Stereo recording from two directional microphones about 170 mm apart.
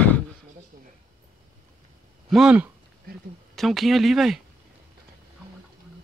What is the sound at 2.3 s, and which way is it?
Speech, 5° right (ahead or behind).